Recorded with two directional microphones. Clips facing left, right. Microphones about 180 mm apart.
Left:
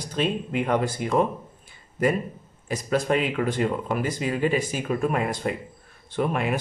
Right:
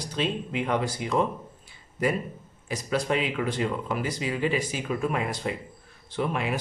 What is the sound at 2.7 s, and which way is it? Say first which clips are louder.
Speech: left 3 dB; 50° left (ahead or behind).